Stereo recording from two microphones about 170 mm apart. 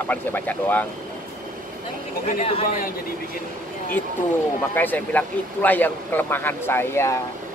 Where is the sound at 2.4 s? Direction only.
35° left (ahead or behind).